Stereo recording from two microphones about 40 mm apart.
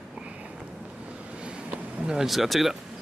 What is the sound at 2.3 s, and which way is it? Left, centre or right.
Speech, centre.